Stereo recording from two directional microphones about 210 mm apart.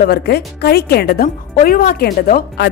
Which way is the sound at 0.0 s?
50° left (ahead or behind).